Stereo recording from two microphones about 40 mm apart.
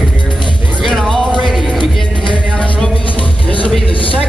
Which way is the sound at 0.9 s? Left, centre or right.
Left.